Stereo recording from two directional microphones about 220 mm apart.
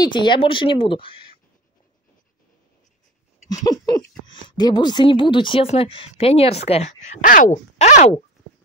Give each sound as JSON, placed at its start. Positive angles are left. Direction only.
{"t": 0.0, "sound": "speech", "side_deg": 20}
{"t": 3.4, "sound": "speech", "side_deg": 15}